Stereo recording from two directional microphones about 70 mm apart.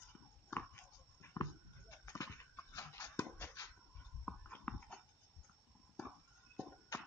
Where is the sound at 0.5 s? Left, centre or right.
Left.